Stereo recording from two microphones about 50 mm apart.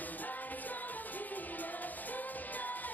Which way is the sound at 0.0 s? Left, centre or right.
Left.